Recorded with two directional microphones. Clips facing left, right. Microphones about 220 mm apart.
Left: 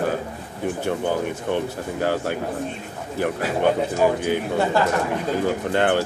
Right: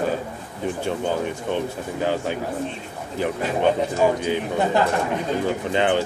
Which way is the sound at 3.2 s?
10° left (ahead or behind).